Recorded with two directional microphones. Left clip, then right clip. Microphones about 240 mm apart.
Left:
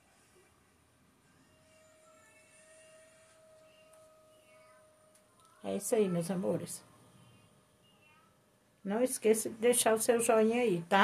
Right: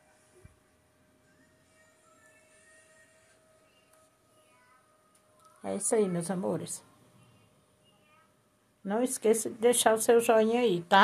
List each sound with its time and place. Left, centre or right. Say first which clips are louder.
5.6 s speech: right 3 dB; centre
8.8 s speech: right 2 dB; centre